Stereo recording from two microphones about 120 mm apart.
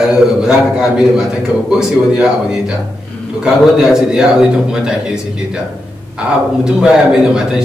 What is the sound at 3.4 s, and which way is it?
A man's voice, 5° right (ahead or behind).